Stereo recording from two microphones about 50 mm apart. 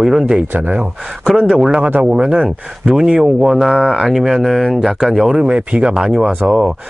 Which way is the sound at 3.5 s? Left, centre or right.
Centre.